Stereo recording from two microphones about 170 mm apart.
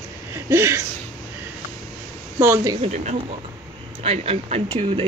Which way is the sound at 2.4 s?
10° right (ahead or behind).